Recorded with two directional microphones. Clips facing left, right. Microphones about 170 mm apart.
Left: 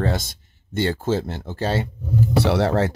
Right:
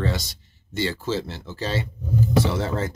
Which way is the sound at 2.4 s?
70° left (ahead or behind).